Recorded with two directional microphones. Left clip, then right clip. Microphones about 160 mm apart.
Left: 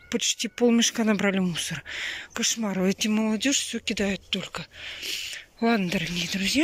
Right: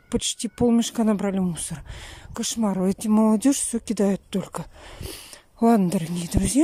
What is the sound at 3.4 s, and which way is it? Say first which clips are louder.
Speech: right 2 dB; 50° right (ahead or behind).